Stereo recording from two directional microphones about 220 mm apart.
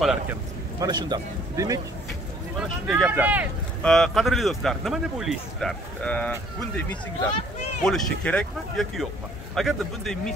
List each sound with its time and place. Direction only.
0.0 s a man's voice: 5° right (ahead or behind)
0.7 s speech: 20° right (ahead or behind)
2.9 s a man's voice: 5° right (ahead or behind)
7.8 s a man's voice: centre (ahead or behind)